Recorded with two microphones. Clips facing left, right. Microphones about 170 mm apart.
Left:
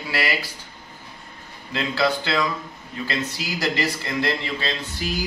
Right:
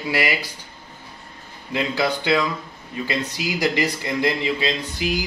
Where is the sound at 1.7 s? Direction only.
15° right (ahead or behind).